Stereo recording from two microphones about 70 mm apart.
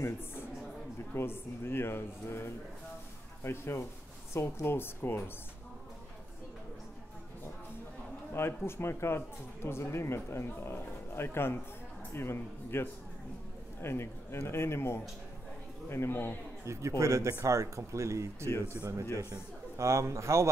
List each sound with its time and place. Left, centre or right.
0.0 s a sound: left
1.1 s speech: left
8.3 s speech: left
16.6 s speech: right